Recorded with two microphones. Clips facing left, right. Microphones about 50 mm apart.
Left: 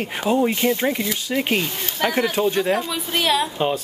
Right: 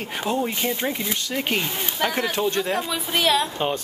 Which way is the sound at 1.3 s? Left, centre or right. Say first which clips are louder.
Left 4 dB; centre.